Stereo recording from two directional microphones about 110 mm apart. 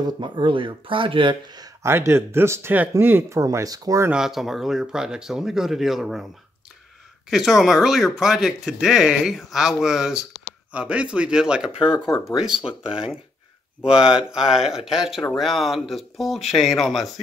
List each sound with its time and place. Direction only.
0.0 s speech: 45° right (ahead or behind)
1.6 s speech: 25° right (ahead or behind)
4.1 s speech: 5° right (ahead or behind)
7.2 s speech: 5° right (ahead or behind)